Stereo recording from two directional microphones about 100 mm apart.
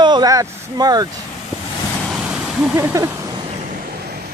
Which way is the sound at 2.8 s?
30° right (ahead or behind).